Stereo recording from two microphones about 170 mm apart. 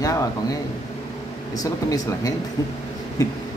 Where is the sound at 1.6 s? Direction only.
20° left (ahead or behind).